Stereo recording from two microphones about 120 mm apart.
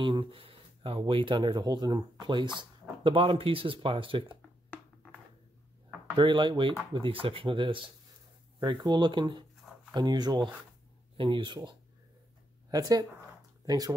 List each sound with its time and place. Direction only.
0.0 s speech: 40° right (ahead or behind)
6.1 s speech: 40° right (ahead or behind)
12.7 s speech: 30° right (ahead or behind)